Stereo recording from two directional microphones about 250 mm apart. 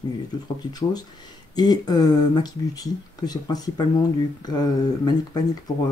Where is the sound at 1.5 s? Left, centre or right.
Centre.